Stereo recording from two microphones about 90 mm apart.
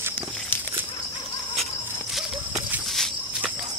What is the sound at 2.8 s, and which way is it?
Walk, 5° left (ahead or behind).